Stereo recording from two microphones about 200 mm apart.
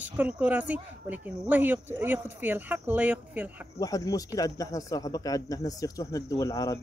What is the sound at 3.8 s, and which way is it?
A man's voice, 15° left (ahead or behind).